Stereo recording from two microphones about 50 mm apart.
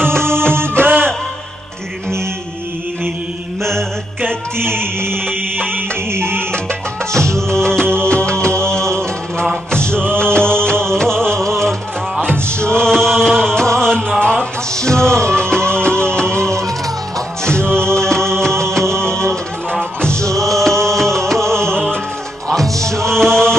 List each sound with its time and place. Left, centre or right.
0.0 s music: right
4.6 s music: right
5.6 s music: right
6.1 s music: right
6.5 s music: centre
17.5 s music: centre